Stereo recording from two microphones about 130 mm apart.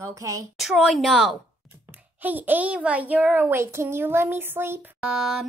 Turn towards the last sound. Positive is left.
turn(degrees=-5)  # may be behind; listen again after turning